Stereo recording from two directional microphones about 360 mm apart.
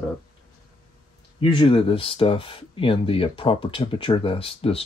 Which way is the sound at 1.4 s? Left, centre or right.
Centre.